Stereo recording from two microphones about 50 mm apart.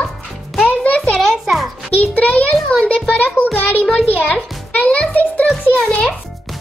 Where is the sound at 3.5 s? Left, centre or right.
Left.